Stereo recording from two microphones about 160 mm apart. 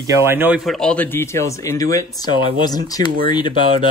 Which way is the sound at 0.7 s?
5° left (ahead or behind).